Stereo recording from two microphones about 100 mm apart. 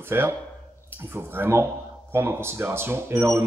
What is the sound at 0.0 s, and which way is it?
Speech, 25° right (ahead or behind).